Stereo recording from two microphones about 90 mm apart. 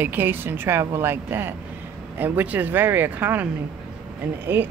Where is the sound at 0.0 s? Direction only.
20° right (ahead or behind).